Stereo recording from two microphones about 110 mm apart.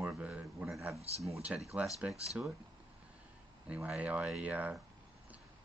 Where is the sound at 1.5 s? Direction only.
5° right (ahead or behind).